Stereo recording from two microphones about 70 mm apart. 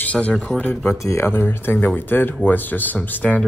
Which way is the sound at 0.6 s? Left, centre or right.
Left.